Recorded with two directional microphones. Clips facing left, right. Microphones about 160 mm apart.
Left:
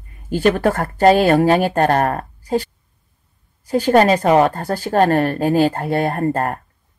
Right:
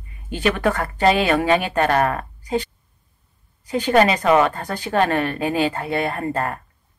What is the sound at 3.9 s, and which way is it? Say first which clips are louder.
A woman's voice: left 3 dB; 45° left (ahead or behind).